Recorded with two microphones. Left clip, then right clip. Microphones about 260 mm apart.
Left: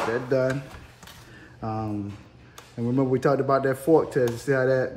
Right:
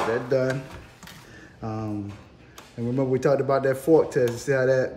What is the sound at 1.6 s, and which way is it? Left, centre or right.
Speech, centre.